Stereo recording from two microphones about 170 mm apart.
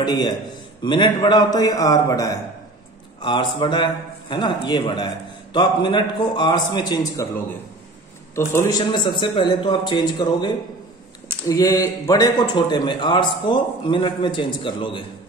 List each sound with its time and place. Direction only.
0.0 s a man's voice: 25° left (ahead or behind)
8.4 s a man's voice: 20° left (ahead or behind)